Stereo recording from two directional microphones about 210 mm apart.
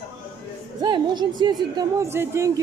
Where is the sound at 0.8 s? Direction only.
20° right (ahead or behind).